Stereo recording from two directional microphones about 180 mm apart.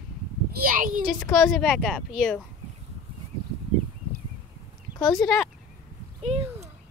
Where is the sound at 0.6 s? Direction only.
50° right (ahead or behind).